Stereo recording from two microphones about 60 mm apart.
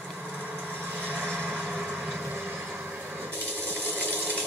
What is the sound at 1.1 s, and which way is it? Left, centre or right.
Vehicle, centre.